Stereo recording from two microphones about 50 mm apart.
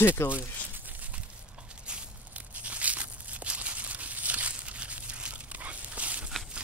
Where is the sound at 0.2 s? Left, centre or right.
Left.